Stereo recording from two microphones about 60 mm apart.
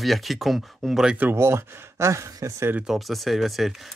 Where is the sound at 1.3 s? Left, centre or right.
Right.